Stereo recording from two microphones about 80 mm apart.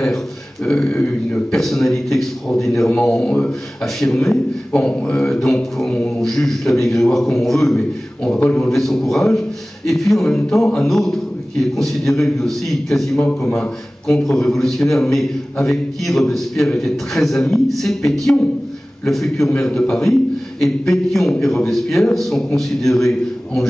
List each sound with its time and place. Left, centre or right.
0.8 s a man's voice: centre
1.5 s a man's voice: centre